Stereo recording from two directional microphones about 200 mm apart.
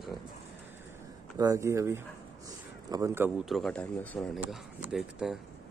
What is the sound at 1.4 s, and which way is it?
Speech, 15° right (ahead or behind).